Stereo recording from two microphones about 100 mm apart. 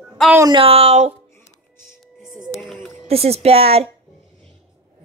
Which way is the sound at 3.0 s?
90° right.